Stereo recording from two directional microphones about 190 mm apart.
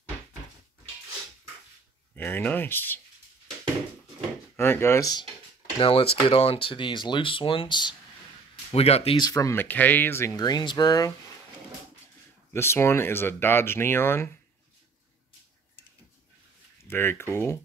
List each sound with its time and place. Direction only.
2.1 s speech: 10° left (ahead or behind)
4.6 s speech: 10° left (ahead or behind)
5.8 s speech: 30° left (ahead or behind)
12.5 s speech: 15° left (ahead or behind)
16.8 s speech: 10° left (ahead or behind)